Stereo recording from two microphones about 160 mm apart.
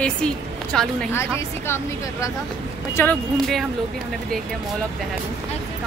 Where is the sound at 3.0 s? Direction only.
15° left (ahead or behind).